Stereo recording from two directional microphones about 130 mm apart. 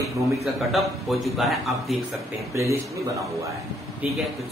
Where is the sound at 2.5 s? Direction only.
20° right (ahead or behind).